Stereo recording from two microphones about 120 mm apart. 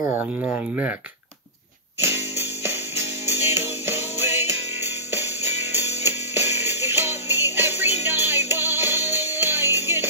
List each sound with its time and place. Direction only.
0.1 s speech: 15° right (ahead or behind)
2.0 s music: 20° right (ahead or behind)
3.8 s music: 20° right (ahead or behind)